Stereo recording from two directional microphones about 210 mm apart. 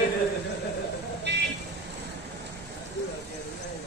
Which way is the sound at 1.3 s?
55° right (ahead or behind).